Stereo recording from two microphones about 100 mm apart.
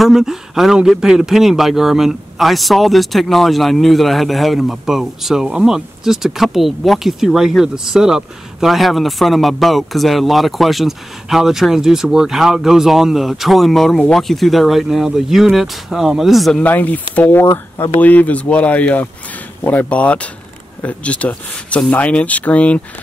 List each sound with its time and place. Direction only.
0.0 s a man's voice: 5° right (ahead or behind)
16.6 s speech: 15° left (ahead or behind)